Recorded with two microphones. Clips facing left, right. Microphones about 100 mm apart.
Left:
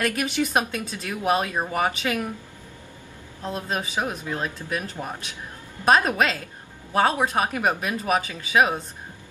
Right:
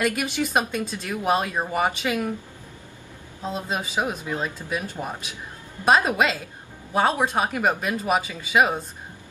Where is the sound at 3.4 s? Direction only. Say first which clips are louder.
Even; 15° right (ahead or behind).